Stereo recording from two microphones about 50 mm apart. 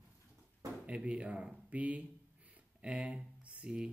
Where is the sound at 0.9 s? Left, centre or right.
Right.